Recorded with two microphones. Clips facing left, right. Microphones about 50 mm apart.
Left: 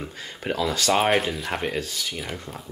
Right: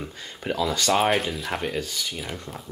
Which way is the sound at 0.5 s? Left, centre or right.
Centre.